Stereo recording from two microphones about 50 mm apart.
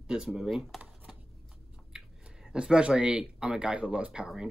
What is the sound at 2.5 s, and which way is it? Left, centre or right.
Speech, centre.